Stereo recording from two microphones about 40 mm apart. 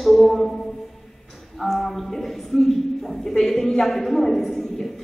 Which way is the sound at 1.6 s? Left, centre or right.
Centre.